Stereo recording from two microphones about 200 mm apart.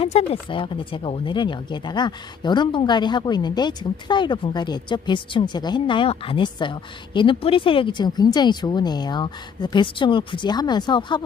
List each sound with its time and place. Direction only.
0.0 s speech: 30° left (ahead or behind)